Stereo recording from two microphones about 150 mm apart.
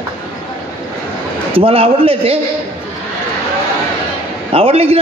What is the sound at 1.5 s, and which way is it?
Speech, 40° right (ahead or behind).